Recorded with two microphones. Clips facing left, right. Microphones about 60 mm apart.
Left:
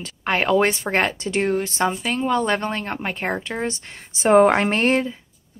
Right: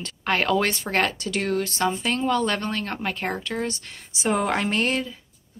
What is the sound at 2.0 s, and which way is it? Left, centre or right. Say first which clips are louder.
Speech: left 2 dB; centre.